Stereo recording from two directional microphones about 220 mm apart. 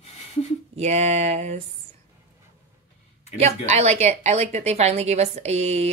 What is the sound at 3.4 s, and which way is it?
A woman's voice, 30° right (ahead or behind).